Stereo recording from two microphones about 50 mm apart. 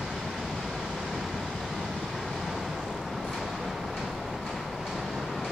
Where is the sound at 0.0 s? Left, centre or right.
Centre.